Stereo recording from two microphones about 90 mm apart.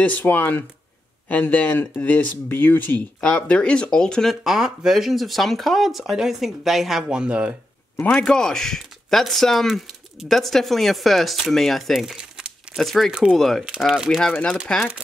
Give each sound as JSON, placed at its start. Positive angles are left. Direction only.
{"t": 0.0, "sound": "speech", "side_deg": 20}
{"t": 4.4, "sound": "speech", "side_deg": -5}
{"t": 8.0, "sound": "speech", "side_deg": 10}
{"t": 14.7, "sound": "speech", "side_deg": 10}